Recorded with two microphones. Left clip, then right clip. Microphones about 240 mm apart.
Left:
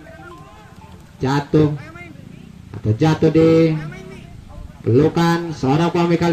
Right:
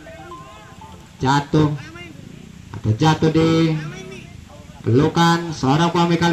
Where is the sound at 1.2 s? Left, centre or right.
Right.